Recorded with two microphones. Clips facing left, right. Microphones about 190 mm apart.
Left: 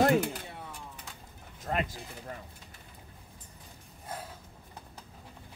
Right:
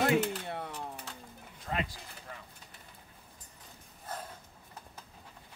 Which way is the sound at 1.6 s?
45° left (ahead or behind).